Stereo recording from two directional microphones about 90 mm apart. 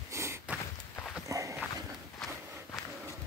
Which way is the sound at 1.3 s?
35° right (ahead or behind).